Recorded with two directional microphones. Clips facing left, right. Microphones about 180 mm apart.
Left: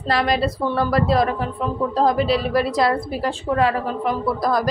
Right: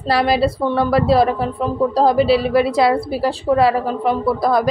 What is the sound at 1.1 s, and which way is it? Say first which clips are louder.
A woman's voice: right 4 dB; 35° right (ahead or behind).